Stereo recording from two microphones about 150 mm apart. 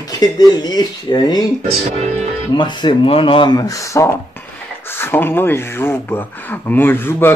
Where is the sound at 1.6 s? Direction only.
45° right (ahead or behind).